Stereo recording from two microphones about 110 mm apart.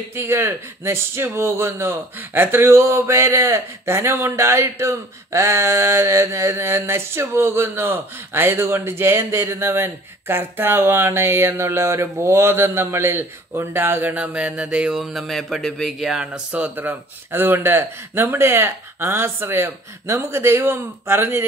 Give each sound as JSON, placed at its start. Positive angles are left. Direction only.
{"t": 0.1, "sound": "a man's voice", "side_deg": -25}